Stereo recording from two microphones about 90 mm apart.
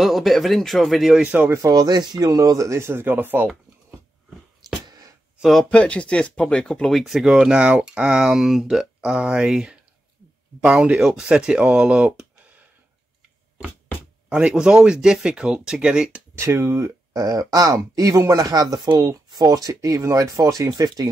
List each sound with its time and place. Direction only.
0.0 s speech: centre (ahead or behind)
1.5 s speech: 45° right (ahead or behind); by 3.4 s 25° right (ahead or behind)
4.8 s a sound: 45° right (ahead or behind)
5.4 s speech: centre (ahead or behind)
5.7 s speech: 15° left (ahead or behind); by 12.6 s 10° right (ahead or behind)
14.3 s speech: 10° right (ahead or behind)
16.3 s speech: 30° right (ahead or behind)